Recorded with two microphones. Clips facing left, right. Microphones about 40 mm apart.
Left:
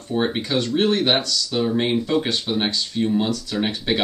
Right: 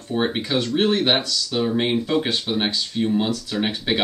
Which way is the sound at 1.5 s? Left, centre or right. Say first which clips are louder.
Even; centre.